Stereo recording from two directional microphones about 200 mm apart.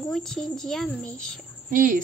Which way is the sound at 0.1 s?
Centre (ahead or behind).